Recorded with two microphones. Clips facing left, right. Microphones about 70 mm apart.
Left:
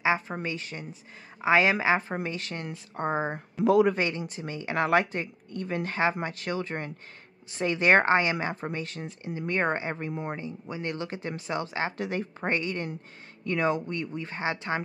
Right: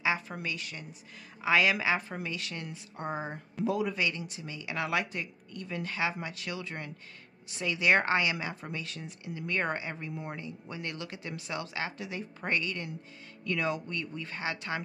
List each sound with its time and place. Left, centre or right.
0.0 s speech: left
3.6 s a man's voice: left
3.9 s speech: left
10.3 s speech: left
12.0 s a woman's voice: left
12.4 s speech: left